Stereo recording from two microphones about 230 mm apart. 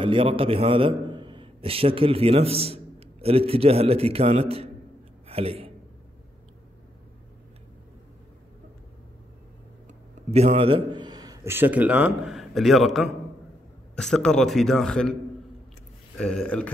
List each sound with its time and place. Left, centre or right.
0.0 s a man's voice: right
10.3 s a man's voice: right; by 15.1 s centre
16.2 s a man's voice: centre